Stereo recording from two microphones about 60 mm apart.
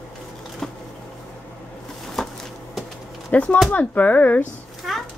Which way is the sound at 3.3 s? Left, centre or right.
Left.